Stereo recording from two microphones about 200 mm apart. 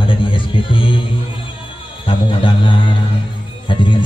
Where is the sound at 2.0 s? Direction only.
25° left (ahead or behind).